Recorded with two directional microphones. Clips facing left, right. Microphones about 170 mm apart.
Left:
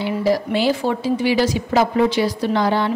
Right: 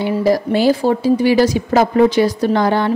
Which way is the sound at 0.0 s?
45° right (ahead or behind).